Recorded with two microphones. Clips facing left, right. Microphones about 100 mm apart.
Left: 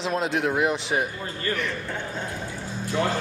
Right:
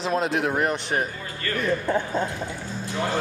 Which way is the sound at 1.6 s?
40° right (ahead or behind).